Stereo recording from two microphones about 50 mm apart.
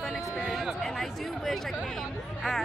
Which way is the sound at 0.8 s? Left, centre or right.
Centre.